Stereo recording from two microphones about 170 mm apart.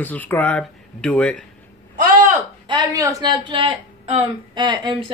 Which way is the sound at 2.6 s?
25° right (ahead or behind).